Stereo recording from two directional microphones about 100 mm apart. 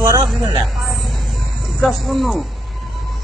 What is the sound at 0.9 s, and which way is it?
Vehicle, centre (ahead or behind).